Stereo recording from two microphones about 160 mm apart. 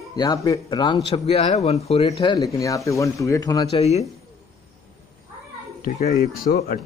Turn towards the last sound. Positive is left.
turn(degrees=75)  # may be behind; listen again after turning